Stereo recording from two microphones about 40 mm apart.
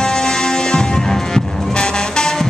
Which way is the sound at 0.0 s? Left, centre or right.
Centre.